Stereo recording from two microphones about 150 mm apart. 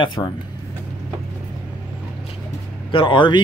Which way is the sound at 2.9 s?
35° left (ahead or behind).